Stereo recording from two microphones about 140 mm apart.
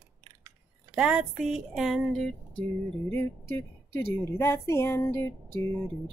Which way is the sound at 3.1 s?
15° left (ahead or behind).